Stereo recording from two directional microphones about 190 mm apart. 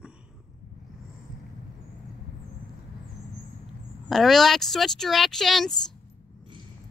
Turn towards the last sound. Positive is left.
turn(degrees=0)  # may be behind; listen again after turning